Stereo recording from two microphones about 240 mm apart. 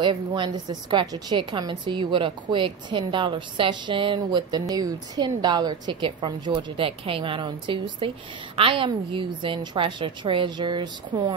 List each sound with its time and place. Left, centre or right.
0.0 s a woman's voice: centre